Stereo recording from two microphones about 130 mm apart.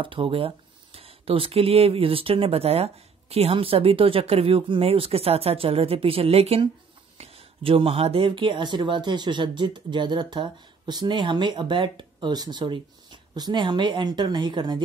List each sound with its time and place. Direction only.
0.0 s speech: 40° right (ahead or behind)